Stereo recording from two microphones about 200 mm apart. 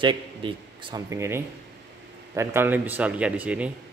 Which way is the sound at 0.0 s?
25° right (ahead or behind).